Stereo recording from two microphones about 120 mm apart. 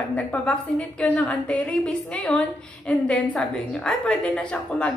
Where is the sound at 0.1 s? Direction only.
10° left (ahead or behind).